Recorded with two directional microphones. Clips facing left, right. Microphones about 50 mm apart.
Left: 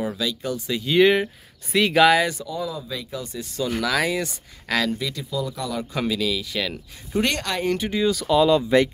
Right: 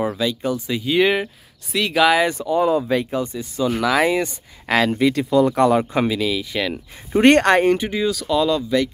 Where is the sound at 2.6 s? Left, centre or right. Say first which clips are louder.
Right 12 dB; right.